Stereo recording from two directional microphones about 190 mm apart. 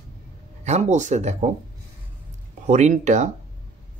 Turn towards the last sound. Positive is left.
turn(degrees=-40)  # may be behind; listen again after turning